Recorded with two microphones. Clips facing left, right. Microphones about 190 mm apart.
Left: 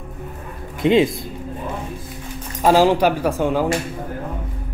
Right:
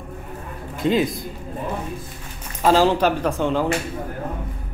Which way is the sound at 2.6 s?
15° left (ahead or behind).